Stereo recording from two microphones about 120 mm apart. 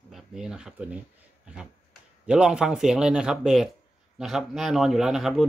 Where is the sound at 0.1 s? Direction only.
5° right (ahead or behind).